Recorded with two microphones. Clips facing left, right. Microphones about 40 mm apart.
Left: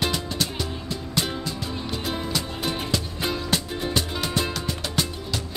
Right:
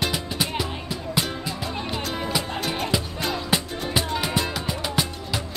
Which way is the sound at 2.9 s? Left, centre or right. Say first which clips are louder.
Right 1 dB; centre.